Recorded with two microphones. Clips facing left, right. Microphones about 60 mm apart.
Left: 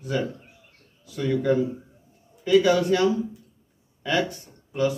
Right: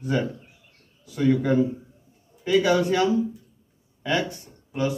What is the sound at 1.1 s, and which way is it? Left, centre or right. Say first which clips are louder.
Speech: right 2 dB; right.